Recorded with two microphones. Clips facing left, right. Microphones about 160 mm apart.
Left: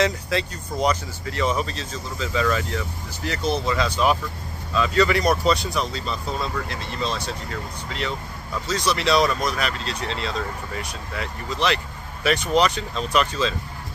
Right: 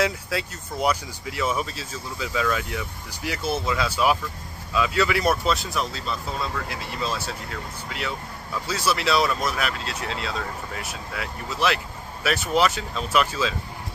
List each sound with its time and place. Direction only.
0.0 s speech: 5° right (ahead or behind)
8.6 s speech: 5° right (ahead or behind)